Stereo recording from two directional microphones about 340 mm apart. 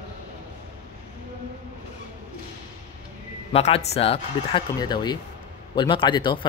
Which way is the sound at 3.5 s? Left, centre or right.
Centre.